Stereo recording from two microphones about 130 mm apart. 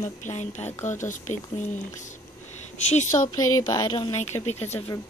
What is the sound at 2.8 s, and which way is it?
Speech, 70° left (ahead or behind).